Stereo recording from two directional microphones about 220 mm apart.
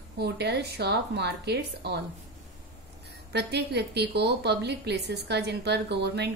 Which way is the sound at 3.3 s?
50° right (ahead or behind).